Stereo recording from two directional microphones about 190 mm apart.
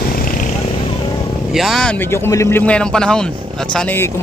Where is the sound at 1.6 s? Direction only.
Centre (ahead or behind).